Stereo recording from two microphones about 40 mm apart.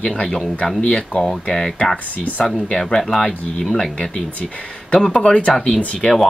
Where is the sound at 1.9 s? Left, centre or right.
Left.